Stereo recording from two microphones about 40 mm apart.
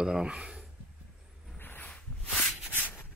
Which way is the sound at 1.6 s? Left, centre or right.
Left.